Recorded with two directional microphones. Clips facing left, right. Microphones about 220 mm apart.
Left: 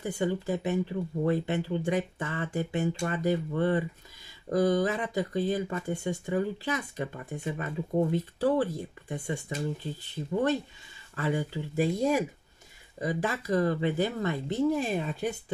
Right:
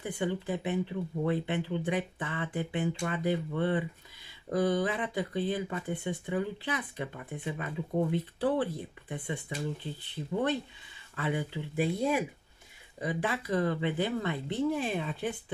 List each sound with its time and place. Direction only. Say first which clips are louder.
0.0 s speech: left 3 dB; 40° left (ahead or behind)